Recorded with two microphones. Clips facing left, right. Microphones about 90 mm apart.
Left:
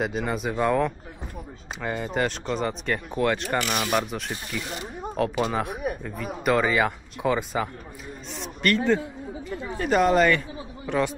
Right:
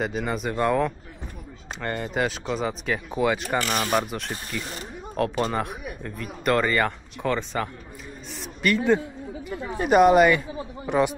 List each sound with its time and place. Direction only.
0.0 s speech: centre (ahead or behind)
3.6 s speech: 35° right (ahead or behind)
3.9 s speech: centre (ahead or behind)
8.4 s a sound: 5° right (ahead or behind)
9.8 s a woman's voice: 15° right (ahead or behind)